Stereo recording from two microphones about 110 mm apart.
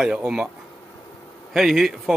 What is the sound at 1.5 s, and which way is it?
Speech, centre (ahead or behind).